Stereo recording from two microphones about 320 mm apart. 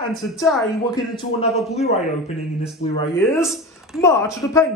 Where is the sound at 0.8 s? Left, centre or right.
Centre.